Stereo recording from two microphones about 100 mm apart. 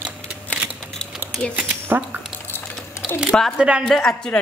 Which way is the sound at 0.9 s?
5° left (ahead or behind).